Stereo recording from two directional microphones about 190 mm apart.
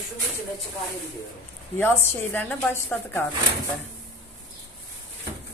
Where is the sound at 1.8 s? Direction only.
10° left (ahead or behind).